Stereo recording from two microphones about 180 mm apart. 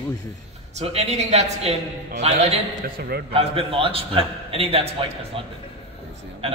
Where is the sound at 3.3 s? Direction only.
30° right (ahead or behind).